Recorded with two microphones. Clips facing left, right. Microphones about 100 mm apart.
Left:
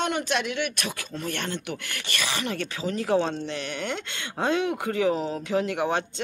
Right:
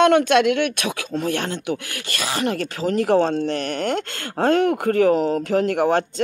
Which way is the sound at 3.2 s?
45° right (ahead or behind).